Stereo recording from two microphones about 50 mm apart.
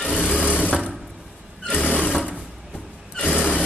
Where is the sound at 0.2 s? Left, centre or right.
Centre.